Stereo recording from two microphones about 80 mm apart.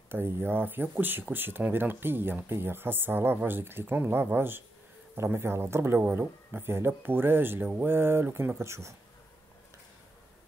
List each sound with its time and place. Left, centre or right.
0.1 s speech: right